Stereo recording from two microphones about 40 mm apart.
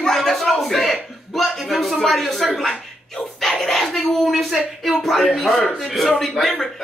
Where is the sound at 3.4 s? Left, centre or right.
Centre.